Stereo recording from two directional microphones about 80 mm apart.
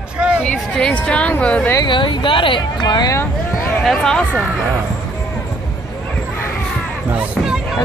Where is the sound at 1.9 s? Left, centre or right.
Left.